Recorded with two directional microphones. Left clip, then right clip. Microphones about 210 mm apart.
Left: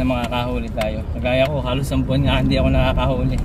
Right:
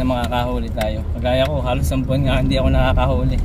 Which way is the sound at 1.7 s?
20° right (ahead or behind).